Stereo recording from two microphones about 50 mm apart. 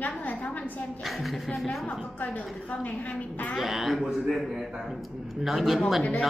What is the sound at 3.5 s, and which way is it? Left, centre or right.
Speech, centre.